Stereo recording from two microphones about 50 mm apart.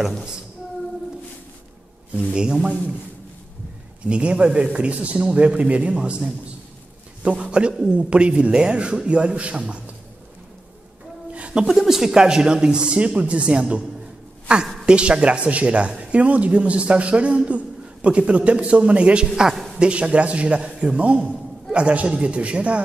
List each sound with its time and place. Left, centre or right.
2.1 s speech: centre
4.0 s a man's voice: right
11.3 s a sound: right
11.6 s a man's voice: centre; by 19.2 s right
19.3 s speech: centre
19.8 s a man's voice: right